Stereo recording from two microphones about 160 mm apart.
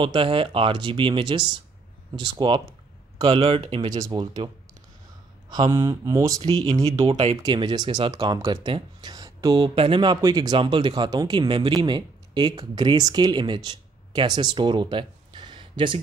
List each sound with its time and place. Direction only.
0.0 s speech: 35° right (ahead or behind)
5.5 s speech: 25° right (ahead or behind)
7.1 s speech: 40° right (ahead or behind)
7.4 s speech: 25° right (ahead or behind)